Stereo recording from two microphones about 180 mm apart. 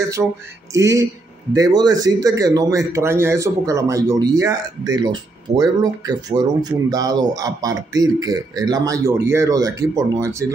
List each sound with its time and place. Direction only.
0.2 s speech: 10° right (ahead or behind)